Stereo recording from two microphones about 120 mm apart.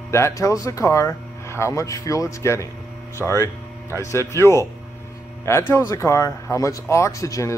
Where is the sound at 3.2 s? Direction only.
Centre (ahead or behind).